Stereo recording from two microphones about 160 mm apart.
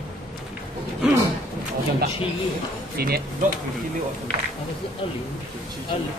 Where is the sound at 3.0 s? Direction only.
75° right (ahead or behind).